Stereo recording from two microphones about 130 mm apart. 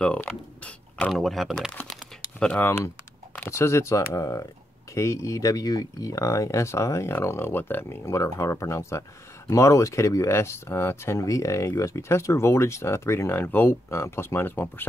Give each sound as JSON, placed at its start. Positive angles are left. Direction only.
{"t": 0.0, "sound": "speech", "side_deg": 10}